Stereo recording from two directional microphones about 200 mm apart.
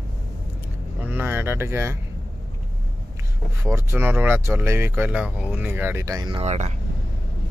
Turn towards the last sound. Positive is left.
turn(degrees=-30)  # may be behind; listen again after turning